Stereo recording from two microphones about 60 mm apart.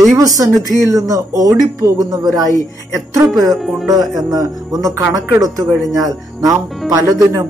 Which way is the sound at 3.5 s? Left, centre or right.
Centre.